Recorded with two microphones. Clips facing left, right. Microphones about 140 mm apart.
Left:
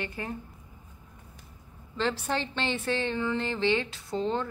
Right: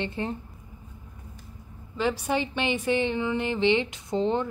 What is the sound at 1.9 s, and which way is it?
A woman's voice, 10° right (ahead or behind).